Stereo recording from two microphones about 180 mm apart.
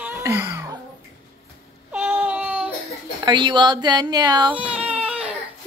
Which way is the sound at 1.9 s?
10° right (ahead or behind).